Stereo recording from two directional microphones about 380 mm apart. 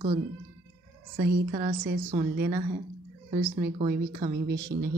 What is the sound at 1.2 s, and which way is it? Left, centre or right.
Speech, right.